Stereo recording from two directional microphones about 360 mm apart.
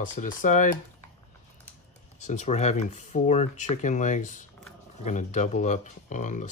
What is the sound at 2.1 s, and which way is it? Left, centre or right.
Speech, centre.